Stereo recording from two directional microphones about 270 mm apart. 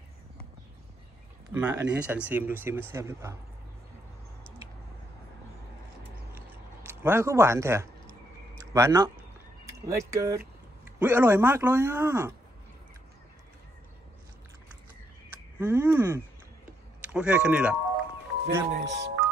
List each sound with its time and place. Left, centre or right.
1.5 s speech: centre
6.3 s a sound: centre
8.7 s speech: centre
15.6 s speech: centre
18.7 s speech: right